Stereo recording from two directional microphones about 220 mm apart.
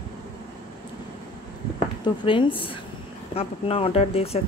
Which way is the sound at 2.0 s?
20° left (ahead or behind).